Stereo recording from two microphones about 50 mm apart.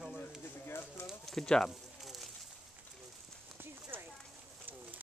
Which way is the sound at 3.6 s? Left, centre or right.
Right.